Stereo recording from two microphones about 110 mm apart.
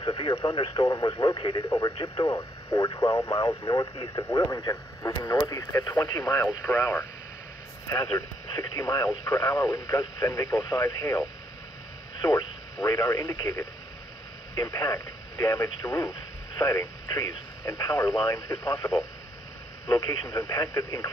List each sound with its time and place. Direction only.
0.0 s speech: 45° left (ahead or behind)
8.5 s speech: 35° left (ahead or behind)